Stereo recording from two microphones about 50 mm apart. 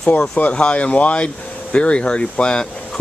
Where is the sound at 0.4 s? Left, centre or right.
Left.